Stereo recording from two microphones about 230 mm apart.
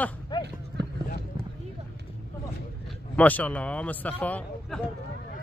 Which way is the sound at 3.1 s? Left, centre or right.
Centre.